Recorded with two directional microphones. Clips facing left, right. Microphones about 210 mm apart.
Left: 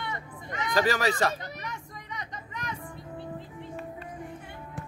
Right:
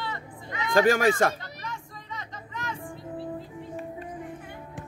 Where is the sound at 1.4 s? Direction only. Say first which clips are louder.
Even; 20° left (ahead or behind).